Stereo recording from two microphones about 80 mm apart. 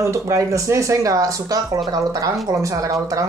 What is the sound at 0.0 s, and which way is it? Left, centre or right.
Speech, right.